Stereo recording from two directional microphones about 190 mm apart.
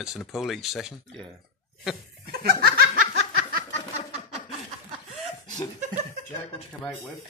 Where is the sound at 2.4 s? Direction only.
55° right (ahead or behind).